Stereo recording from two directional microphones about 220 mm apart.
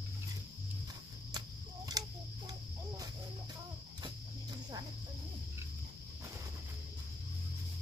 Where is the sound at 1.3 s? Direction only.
20° right (ahead or behind).